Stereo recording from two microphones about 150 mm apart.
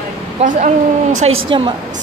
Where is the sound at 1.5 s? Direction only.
35° right (ahead or behind).